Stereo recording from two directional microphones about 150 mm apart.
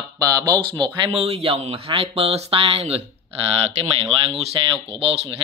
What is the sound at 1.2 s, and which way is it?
Speech, 45° right (ahead or behind).